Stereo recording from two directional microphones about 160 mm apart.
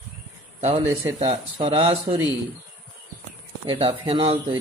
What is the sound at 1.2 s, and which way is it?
Speech, 40° right (ahead or behind).